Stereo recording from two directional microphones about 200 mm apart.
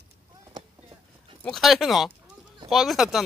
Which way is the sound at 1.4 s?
Centre (ahead or behind).